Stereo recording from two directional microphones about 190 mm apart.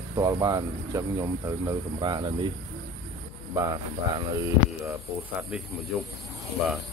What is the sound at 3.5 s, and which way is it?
Speech, 20° right (ahead or behind).